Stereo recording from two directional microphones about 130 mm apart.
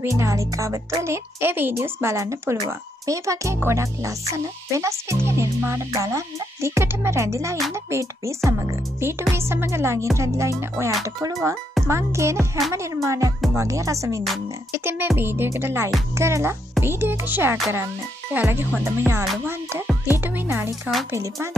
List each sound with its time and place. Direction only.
0.0 s speech: 25° right (ahead or behind)
11.9 s speech: 20° right (ahead or behind)
14.7 s music: 20° right (ahead or behind)
16.2 s speech: 20° right (ahead or behind)
16.8 s music: 15° right (ahead or behind)
21.1 s speech: 20° right (ahead or behind)